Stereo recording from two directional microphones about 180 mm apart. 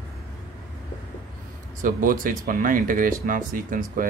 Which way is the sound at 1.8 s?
50° right (ahead or behind).